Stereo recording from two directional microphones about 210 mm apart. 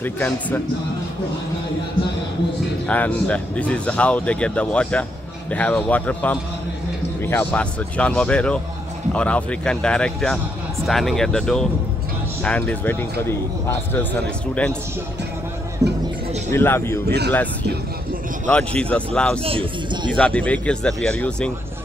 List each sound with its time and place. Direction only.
0.0 s speech: 10° left (ahead or behind)
2.9 s speech: 5° left (ahead or behind)
15.8 s speech: 15° right (ahead or behind)
16.5 s speech: 10° left (ahead or behind)
18.5 s speech: 5° left (ahead or behind)
19.4 s speech: 25° right (ahead or behind)
20.1 s speech: 5° left (ahead or behind)